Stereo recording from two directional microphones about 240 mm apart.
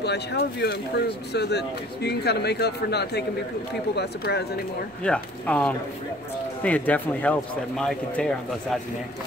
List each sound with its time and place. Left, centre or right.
0.0 s speech: left
5.0 s speech: centre